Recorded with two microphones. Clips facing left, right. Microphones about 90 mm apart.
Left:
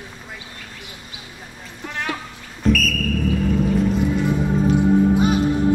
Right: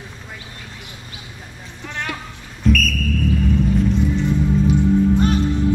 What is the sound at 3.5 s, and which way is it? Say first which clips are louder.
Music: even; 5° left (ahead or behind).